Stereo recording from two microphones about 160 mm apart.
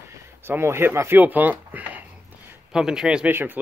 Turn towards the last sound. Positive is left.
turn(degrees=-10)  # may be behind; listen again after turning